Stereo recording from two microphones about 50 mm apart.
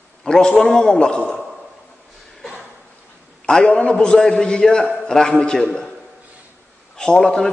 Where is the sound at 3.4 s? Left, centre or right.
Centre.